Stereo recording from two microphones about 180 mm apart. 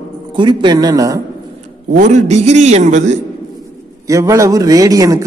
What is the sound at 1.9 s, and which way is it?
A man's voice, 45° right (ahead or behind).